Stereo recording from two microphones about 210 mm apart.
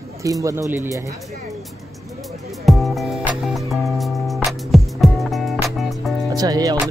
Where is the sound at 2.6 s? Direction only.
Centre (ahead or behind).